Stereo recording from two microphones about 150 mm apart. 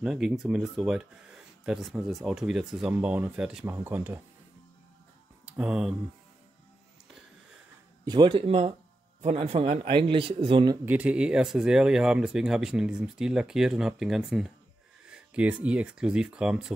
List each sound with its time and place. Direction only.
0.0 s speech: 5° right (ahead or behind)
5.4 s speech: 5° right (ahead or behind)
8.0 s a man's voice: 30° right (ahead or behind)
10.9 s speech: 10° right (ahead or behind)